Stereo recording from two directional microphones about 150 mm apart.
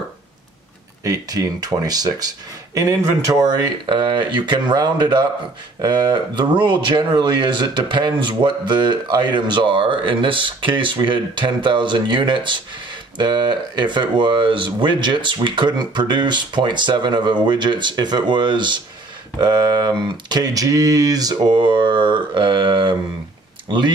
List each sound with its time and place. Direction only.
1.0 s speech: 25° right (ahead or behind)